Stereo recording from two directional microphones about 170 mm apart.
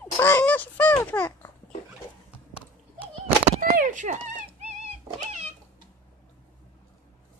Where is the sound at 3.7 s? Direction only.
50° right (ahead or behind).